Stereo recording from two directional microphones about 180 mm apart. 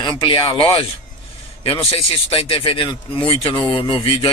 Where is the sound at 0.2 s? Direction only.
30° left (ahead or behind).